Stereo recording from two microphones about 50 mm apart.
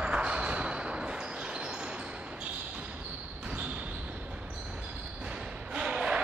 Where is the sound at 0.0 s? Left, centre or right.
Right.